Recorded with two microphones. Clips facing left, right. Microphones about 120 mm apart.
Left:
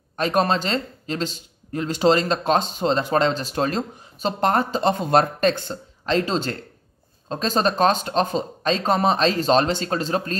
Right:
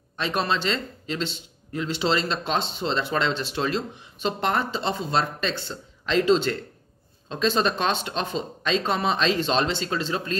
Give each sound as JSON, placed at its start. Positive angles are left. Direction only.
{"t": 0.1, "sound": "speech", "side_deg": 45}